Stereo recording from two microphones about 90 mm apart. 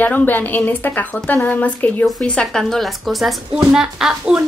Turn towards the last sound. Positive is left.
turn(degrees=-5)  # may be behind; listen again after turning